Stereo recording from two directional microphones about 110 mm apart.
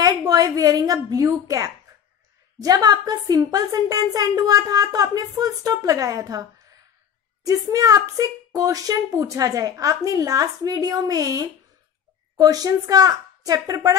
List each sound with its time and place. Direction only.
0.0 s a woman's voice: 35° right (ahead or behind)